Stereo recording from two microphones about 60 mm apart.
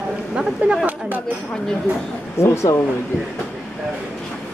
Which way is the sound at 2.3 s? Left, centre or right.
Left.